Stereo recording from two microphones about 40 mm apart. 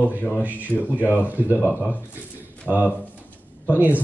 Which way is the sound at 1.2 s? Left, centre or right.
Right.